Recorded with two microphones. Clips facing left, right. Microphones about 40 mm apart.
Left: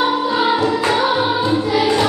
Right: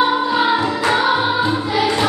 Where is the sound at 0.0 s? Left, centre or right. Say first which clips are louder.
Right 1 dB; centre.